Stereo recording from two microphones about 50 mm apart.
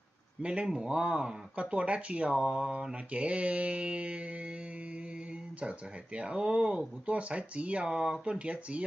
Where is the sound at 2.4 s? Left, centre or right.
Centre.